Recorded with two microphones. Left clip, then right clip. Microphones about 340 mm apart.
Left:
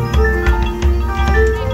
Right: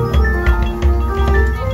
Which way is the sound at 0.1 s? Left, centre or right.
Centre.